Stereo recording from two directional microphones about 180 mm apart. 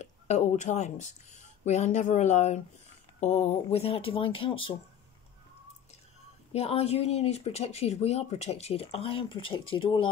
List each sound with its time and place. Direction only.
0.0 s speech: 40° left (ahead or behind)
6.5 s speech: 35° left (ahead or behind)